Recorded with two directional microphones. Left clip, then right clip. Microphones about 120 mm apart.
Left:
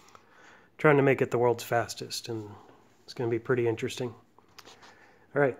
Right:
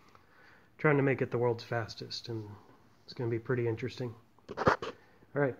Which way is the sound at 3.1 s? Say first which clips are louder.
Left 6 dB; 40° left (ahead or behind).